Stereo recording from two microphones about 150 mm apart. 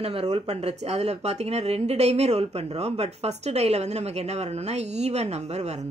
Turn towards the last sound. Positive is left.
turn(degrees=-45)  # may be behind; listen again after turning